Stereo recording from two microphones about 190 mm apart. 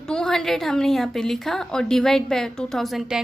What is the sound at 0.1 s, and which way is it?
A woman's voice, 5° left (ahead or behind).